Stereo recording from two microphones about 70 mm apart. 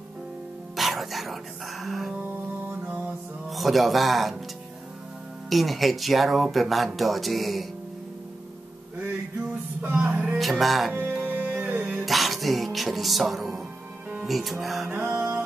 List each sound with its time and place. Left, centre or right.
0.7 s speech: centre
3.4 s speech: centre
5.5 s speech: centre
9.9 s speech: right
10.3 s speech: centre
10.9 s music: right
11.6 s music: centre
12.0 s music: centre
14.2 s speech: centre
14.9 s music: right